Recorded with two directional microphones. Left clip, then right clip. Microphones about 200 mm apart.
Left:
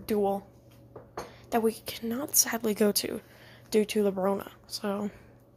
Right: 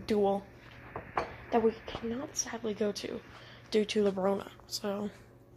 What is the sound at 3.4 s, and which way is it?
Speech, 15° left (ahead or behind).